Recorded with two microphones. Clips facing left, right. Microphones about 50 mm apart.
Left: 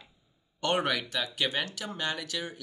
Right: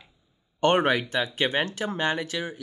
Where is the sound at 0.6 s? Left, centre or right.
Right.